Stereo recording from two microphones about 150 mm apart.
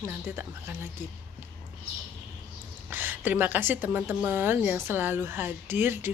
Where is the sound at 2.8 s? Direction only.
15° right (ahead or behind).